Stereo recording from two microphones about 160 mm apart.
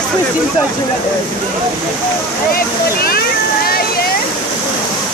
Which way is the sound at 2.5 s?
70° left (ahead or behind).